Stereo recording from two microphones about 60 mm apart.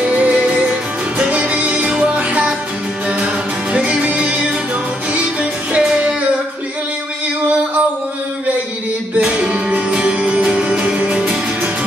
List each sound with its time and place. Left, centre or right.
0.0 s music: right
3.7 s music: right
9.2 s music: right